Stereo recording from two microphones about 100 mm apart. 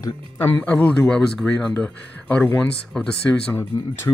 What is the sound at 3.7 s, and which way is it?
Speech, 35° left (ahead or behind).